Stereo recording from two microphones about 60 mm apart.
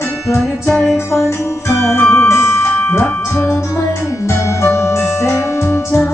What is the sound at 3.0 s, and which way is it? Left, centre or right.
Music, left.